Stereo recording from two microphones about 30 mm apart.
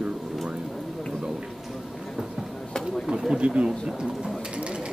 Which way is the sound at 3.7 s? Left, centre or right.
Right.